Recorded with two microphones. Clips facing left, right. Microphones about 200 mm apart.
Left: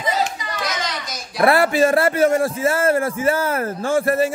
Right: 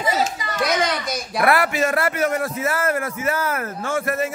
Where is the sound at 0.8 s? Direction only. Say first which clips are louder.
Right 5 dB; 60° right (ahead or behind).